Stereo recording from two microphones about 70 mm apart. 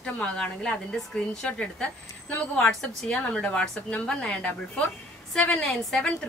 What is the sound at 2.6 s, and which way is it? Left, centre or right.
A woman's voice, centre.